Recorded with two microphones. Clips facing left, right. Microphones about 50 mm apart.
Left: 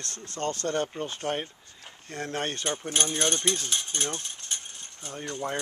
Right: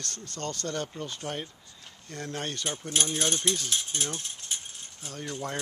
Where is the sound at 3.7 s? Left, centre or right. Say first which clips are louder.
Left 1 dB; centre.